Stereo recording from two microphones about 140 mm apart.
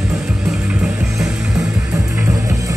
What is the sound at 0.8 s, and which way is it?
Music, 5° right (ahead or behind).